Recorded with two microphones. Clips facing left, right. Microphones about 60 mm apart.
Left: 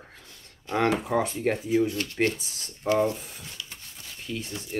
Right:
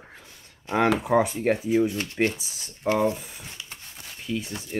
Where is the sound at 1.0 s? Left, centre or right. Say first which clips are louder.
Right 4 dB; centre.